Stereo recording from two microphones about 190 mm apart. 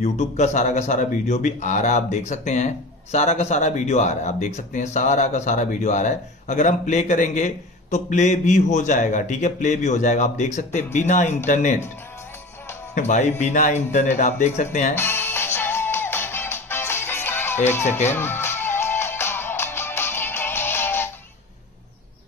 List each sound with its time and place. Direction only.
0.0 s speech: 35° left (ahead or behind)
12.9 s speech: 40° left (ahead or behind)
15.0 s music: 10° left (ahead or behind)
17.6 s speech: 10° left (ahead or behind)
18.1 s music: 10° left (ahead or behind)